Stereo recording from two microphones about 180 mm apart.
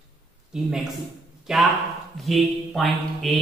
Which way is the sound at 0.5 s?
5° right (ahead or behind).